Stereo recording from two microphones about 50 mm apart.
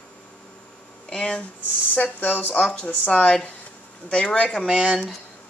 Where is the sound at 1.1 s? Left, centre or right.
Centre.